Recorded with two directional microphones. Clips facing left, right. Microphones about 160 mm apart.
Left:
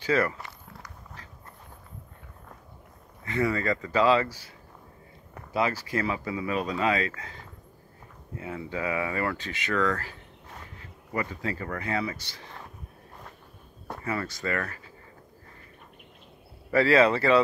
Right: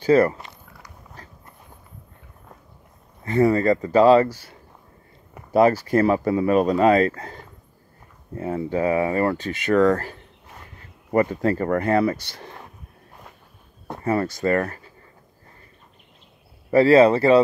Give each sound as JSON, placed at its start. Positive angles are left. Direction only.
{"t": 0.0, "sound": "speech", "side_deg": -40}
{"t": 3.3, "sound": "speech", "side_deg": -40}
{"t": 5.5, "sound": "speech", "side_deg": -50}
{"t": 8.4, "sound": "speech", "side_deg": -40}
{"t": 14.2, "sound": "speech", "side_deg": -40}
{"t": 16.7, "sound": "speech", "side_deg": -35}